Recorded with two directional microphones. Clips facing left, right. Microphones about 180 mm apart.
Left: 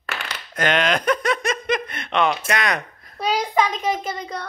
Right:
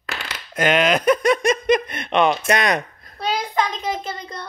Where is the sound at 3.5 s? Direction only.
10° left (ahead or behind).